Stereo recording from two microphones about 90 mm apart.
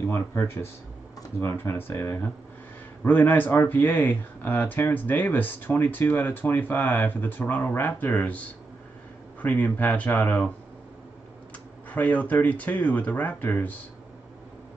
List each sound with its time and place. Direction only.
0.1 s speech: 25° left (ahead or behind)
9.4 s speech: 15° left (ahead or behind)
11.9 s speech: 15° left (ahead or behind)